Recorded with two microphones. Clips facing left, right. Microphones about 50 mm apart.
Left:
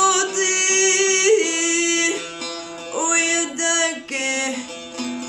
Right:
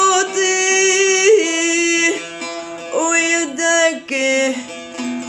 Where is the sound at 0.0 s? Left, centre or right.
Right.